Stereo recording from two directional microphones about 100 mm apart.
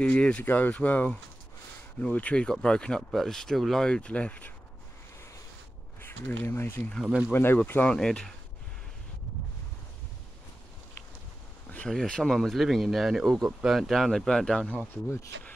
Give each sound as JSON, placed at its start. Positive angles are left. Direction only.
{"t": 0.0, "sound": "speech", "side_deg": 10}
{"t": 6.0, "sound": "speech", "side_deg": 20}
{"t": 7.0, "sound": "speech", "side_deg": -5}
{"t": 7.3, "sound": "speech", "side_deg": 20}
{"t": 7.9, "sound": "speech", "side_deg": 10}
{"t": 11.9, "sound": "speech", "side_deg": 5}